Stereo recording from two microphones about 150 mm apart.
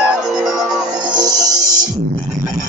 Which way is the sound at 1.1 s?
25° right (ahead or behind).